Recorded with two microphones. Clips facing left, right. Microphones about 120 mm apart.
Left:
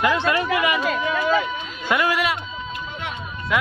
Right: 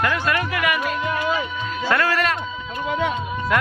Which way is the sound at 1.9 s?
15° left (ahead or behind).